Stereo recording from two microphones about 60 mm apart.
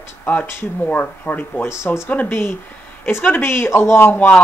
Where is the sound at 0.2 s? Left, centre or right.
Left.